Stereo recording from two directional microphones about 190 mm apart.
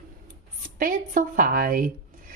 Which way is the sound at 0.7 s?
45° right (ahead or behind).